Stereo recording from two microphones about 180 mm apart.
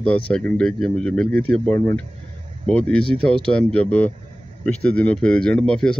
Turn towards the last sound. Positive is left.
turn(degrees=5)  # may be behind; listen again after turning